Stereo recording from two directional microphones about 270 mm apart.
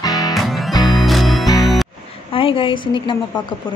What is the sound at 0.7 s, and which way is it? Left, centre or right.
Music, centre.